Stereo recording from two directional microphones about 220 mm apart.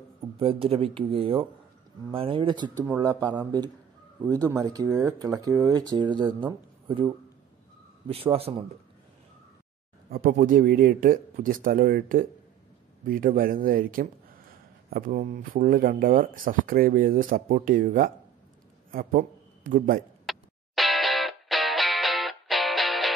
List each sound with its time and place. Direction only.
0.4 s a man's voice: 25° right (ahead or behind)
10.1 s a man's voice: 40° right (ahead or behind)
20.2 s music: centre (ahead or behind)